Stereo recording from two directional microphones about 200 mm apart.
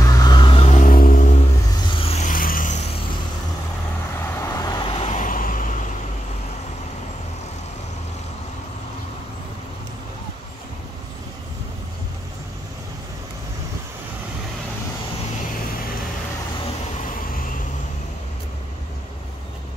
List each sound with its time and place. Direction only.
0.0 s vehicle: 20° left (ahead or behind); by 2.8 s 40° left (ahead or behind)
4.2 s vehicle: 15° left (ahead or behind); by 5.9 s 40° left (ahead or behind)